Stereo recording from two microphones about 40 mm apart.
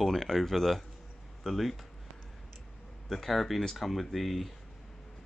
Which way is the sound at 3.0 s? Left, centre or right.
Centre.